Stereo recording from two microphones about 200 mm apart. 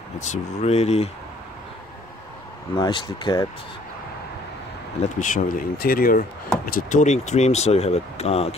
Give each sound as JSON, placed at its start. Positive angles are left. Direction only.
{"t": 0.2, "sound": "speech", "side_deg": 35}
{"t": 2.7, "sound": "speech", "side_deg": 20}
{"t": 5.2, "sound": "speech", "side_deg": 40}